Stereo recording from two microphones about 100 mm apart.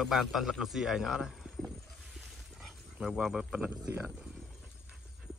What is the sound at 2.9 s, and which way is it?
Speech, 10° right (ahead or behind).